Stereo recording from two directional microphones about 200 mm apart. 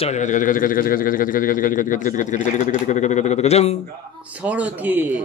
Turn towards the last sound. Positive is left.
turn(degrees=-10)  # may be behind; listen again after turning